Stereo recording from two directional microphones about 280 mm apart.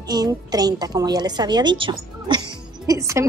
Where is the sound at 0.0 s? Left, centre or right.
Centre.